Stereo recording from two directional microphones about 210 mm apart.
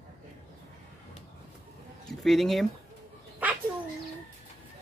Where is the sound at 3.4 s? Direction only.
5° right (ahead or behind).